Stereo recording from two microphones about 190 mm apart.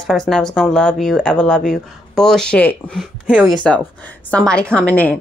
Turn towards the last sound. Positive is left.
turn(degrees=5)  # may be behind; listen again after turning